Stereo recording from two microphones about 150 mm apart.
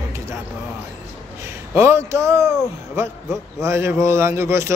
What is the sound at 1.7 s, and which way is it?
Speech, 20° right (ahead or behind).